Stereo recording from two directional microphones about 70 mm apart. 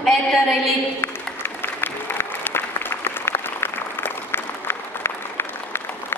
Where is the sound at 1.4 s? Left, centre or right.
Left.